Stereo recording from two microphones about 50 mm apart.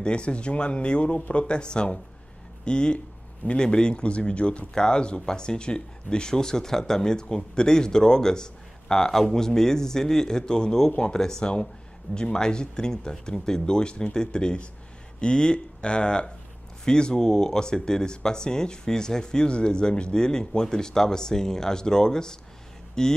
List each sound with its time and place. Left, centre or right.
0.0 s speech: left